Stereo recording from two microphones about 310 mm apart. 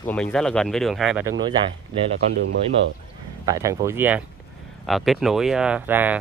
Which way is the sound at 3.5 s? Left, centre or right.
Centre.